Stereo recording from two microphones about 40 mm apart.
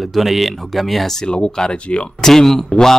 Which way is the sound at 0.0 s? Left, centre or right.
Centre.